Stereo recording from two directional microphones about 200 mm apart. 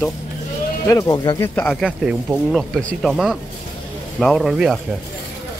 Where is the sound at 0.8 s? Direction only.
15° left (ahead or behind).